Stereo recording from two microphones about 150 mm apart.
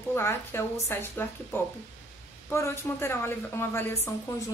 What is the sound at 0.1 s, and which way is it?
A woman's voice, 15° left (ahead or behind).